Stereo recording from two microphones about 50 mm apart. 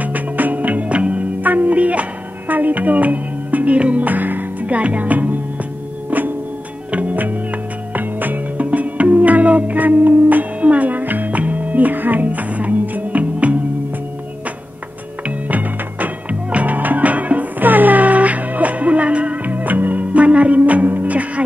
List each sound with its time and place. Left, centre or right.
0.0 s music: right
15.2 s music: right